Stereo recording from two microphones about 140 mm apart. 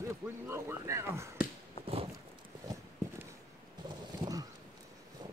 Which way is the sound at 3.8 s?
30° right (ahead or behind).